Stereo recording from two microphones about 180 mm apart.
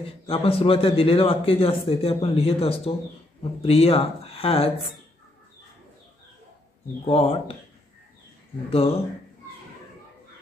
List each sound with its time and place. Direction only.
0.0 s a man's voice: 30° left (ahead or behind)
7.1 s a man's voice: 30° left (ahead or behind)
8.6 s a man's voice: 30° left (ahead or behind)